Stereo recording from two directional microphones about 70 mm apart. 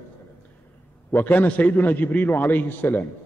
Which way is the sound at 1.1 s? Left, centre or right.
Left.